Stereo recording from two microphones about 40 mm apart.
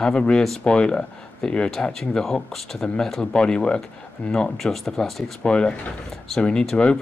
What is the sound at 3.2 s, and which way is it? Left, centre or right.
Speech, left.